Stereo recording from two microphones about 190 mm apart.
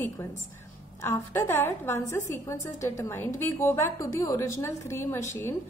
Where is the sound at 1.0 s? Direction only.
15° left (ahead or behind).